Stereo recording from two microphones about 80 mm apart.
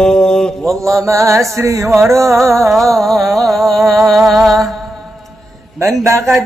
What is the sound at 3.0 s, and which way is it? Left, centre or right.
Music, centre.